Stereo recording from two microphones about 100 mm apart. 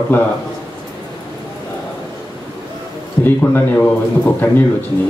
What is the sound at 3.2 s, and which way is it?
Speech, 20° left (ahead or behind).